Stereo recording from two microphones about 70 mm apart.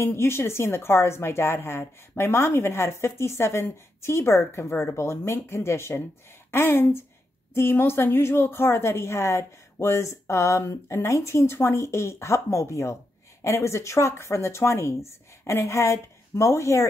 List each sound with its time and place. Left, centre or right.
0.0 s speech: left